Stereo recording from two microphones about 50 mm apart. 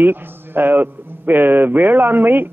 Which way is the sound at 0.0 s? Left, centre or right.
Right.